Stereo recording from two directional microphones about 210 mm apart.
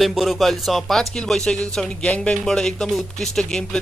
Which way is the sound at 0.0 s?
Centre (ahead or behind).